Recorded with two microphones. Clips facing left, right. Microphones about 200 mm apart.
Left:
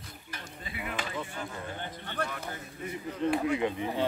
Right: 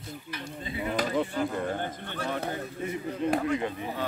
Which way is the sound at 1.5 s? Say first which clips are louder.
Right 8 dB; 50° right (ahead or behind).